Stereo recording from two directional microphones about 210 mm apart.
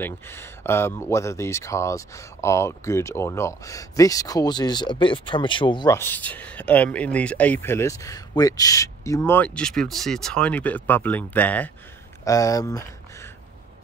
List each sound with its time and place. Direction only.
0.0 s speech: 10° left (ahead or behind)